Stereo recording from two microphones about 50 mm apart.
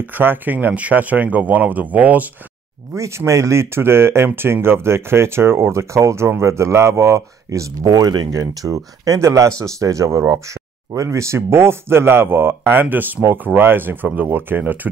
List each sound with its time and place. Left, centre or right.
0.0 s speech: right
2.9 s speech: right
12.9 s speech: right